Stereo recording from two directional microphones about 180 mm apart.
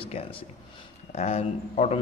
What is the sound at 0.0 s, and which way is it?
A man's voice, 30° left (ahead or behind).